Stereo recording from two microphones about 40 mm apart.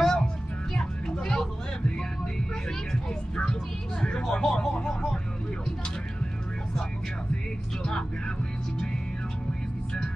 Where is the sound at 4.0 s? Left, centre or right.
Centre.